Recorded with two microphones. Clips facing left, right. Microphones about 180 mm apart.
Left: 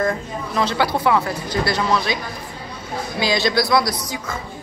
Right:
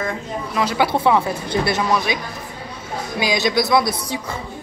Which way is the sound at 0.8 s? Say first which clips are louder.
Right 2 dB; 25° right (ahead or behind).